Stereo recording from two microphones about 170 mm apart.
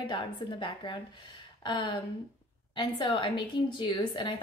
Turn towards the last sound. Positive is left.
turn(degrees=30)  # may be behind; listen again after turning